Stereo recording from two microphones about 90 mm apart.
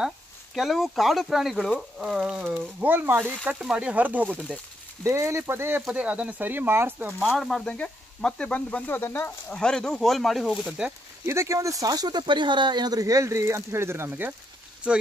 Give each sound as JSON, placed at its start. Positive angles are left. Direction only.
{"t": 0.6, "sound": "speech", "side_deg": 0}
{"t": 2.5, "sound": "speech", "side_deg": -20}
{"t": 3.4, "sound": "speech", "side_deg": -10}
{"t": 5.0, "sound": "speech", "side_deg": -35}
{"t": 7.2, "sound": "speech", "side_deg": -5}
{"t": 7.4, "sound": "sizzle", "side_deg": 10}
{"t": 9.5, "sound": "speech", "side_deg": 10}
{"t": 10.8, "sound": "speech", "side_deg": -10}
{"t": 11.2, "sound": "speech", "side_deg": -30}
{"t": 14.8, "sound": "speech", "side_deg": -10}